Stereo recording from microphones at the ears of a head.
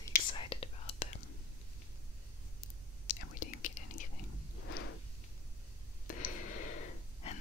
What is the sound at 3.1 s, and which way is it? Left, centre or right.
Whispering, left.